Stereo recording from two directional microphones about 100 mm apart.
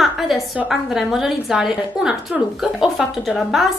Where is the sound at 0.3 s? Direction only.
Centre (ahead or behind).